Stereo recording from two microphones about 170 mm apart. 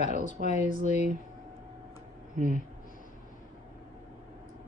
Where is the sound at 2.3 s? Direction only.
50° right (ahead or behind).